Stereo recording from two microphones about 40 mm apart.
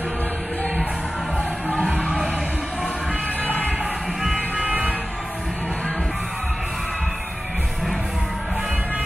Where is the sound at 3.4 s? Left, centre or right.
Left.